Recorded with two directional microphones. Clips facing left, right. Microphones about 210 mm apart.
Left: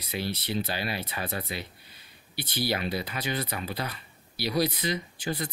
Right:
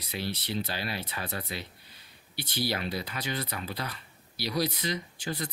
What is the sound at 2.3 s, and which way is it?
Speech, 60° left (ahead or behind).